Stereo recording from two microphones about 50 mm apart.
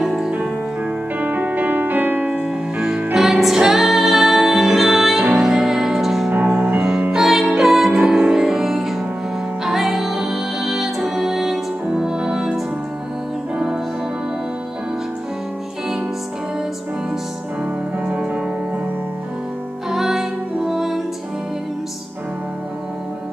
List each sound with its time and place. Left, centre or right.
0.0 s music: centre
1.2 s music: right
3.2 s music: centre
6.3 s music: right
7.2 s music: centre
18.0 s music: right
19.9 s music: centre